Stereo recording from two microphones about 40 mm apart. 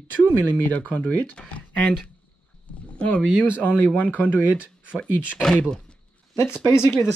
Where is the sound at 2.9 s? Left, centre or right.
Left.